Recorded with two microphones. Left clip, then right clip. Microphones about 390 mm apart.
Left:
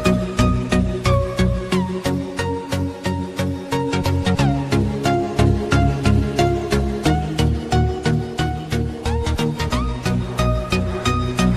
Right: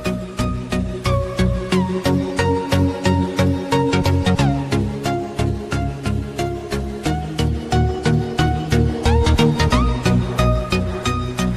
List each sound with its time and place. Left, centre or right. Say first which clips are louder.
0.0 s music: left 5 dB; left
2.3 s music: right 5 dB; right
3.7 s music: right 3 dB; right
4.3 s music: left 1 dB; centre
5.4 s music: left 5 dB; left
8.7 s music: right 8 dB; right